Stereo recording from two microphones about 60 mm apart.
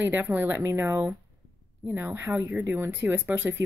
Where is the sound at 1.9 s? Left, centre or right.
Right.